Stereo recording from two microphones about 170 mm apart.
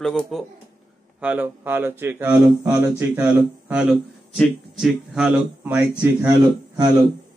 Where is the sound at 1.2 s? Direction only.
10° right (ahead or behind).